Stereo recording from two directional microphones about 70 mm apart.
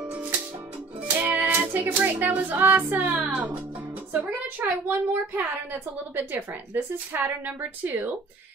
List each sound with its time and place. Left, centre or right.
0.0 s music: centre
1.2 s child singing: right
4.1 s a woman's voice: right